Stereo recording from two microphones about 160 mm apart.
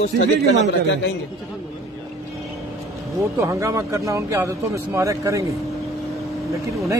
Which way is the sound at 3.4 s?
20° right (ahead or behind).